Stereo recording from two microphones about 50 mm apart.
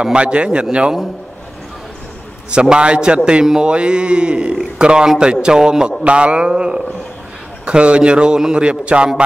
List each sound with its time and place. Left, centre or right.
0.0 s a man's voice: right
2.5 s a man's voice: centre